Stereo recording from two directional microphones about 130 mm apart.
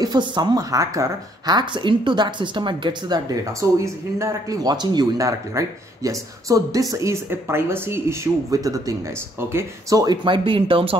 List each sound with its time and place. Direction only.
0.0 s a woman's voice: 35° right (ahead or behind)
3.8 s a woman's voice: 25° right (ahead or behind); by 11.0 s 45° right (ahead or behind)